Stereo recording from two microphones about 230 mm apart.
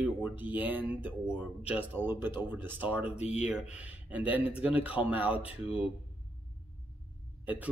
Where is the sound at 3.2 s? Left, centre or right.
Left.